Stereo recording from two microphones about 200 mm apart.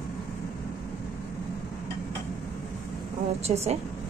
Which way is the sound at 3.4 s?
30° right (ahead or behind).